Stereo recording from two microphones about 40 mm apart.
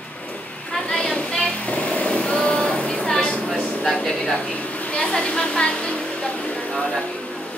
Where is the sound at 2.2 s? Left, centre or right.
Left.